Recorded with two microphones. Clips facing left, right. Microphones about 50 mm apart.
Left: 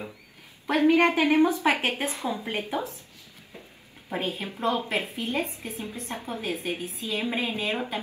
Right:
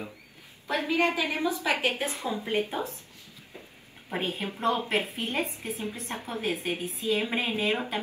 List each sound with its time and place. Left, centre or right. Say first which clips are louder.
0.7 s a woman's voice: left 6 dB; left
4.3 s a woman's voice: even; right